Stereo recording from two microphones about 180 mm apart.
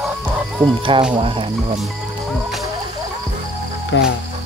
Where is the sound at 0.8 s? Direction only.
30° right (ahead or behind).